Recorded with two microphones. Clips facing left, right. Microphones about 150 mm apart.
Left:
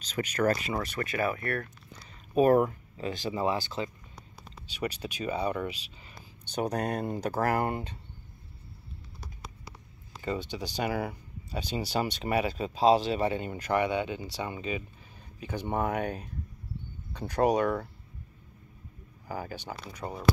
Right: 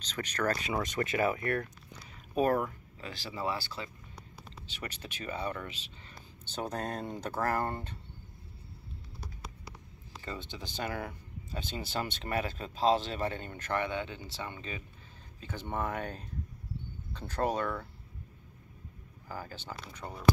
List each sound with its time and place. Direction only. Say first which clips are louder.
0.0 s speech: left 5 dB; 10° left (ahead or behind)
0.8 s speech: right 2 dB; 20° right (ahead or behind)
2.5 s speech: left 8 dB; 20° left (ahead or behind)
10.2 s speech: left 8 dB; 15° left (ahead or behind)
19.2 s speech: left 5 dB; 15° left (ahead or behind)